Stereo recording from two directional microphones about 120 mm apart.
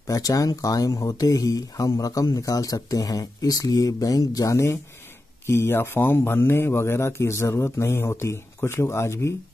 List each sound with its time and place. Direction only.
0.0 s speech: 30° left (ahead or behind)